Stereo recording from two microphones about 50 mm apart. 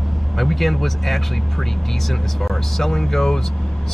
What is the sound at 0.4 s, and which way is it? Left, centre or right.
Speech, centre.